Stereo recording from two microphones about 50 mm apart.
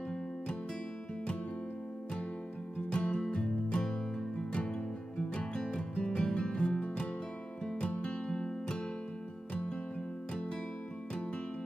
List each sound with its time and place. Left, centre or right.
2.9 s music: left